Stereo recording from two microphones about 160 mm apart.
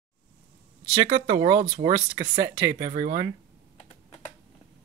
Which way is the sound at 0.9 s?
25° right (ahead or behind).